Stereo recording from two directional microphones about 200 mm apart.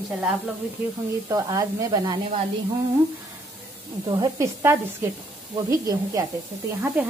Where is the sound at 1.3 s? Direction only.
15° right (ahead or behind).